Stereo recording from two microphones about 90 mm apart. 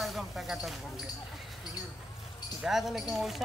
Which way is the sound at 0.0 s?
Centre (ahead or behind).